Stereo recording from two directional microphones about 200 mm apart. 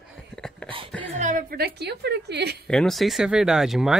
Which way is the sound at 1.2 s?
45° right (ahead or behind).